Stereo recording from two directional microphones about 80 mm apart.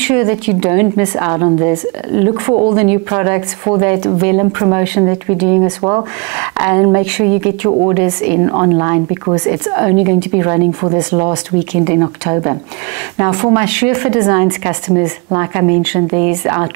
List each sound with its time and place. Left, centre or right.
0.0 s speech: right
5.8 s speech: right